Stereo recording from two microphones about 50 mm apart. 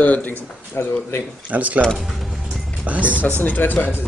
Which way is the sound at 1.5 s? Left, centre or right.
Right.